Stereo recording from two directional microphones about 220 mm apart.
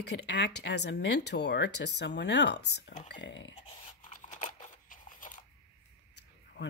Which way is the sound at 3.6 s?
25° left (ahead or behind).